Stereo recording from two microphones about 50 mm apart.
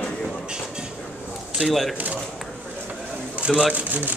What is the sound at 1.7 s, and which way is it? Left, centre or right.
Speech, centre.